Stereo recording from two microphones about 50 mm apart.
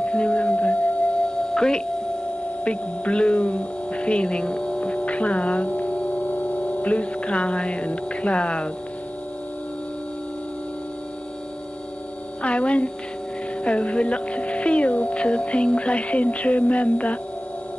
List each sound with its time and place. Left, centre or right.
0.0 s music: left
1.5 s a sound: centre
2.6 s speech: left
12.4 s a woman's voice: left